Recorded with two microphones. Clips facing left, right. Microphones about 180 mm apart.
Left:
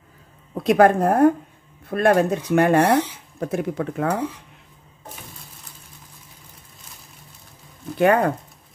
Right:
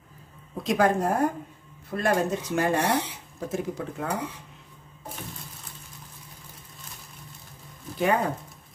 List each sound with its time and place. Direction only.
0.7 s speech: 60° left (ahead or behind)
8.0 s speech: 60° left (ahead or behind)